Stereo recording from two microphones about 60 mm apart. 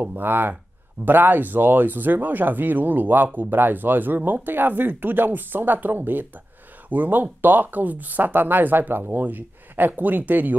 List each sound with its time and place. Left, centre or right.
0.0 s speech: right